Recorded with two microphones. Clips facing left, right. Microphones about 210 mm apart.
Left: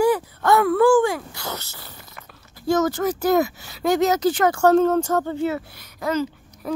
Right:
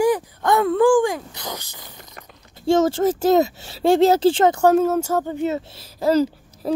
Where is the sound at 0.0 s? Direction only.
15° right (ahead or behind).